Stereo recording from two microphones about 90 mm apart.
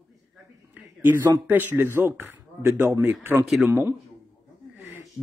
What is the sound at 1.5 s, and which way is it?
Speech, 20° right (ahead or behind).